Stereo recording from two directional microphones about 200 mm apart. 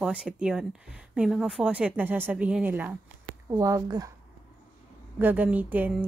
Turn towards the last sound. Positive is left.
turn(degrees=-10)  # may be behind; listen again after turning